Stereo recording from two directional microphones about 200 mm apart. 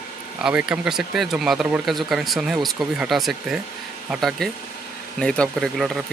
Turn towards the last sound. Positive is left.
turn(degrees=5)  # may be behind; listen again after turning